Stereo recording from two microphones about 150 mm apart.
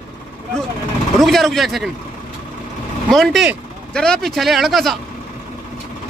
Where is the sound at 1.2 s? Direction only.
Centre (ahead or behind).